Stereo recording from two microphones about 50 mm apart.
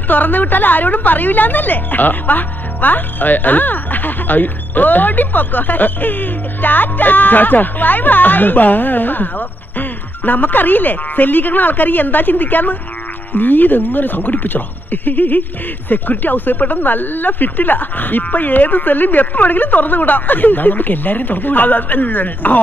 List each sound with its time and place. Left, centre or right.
0.1 s a woman's voice: left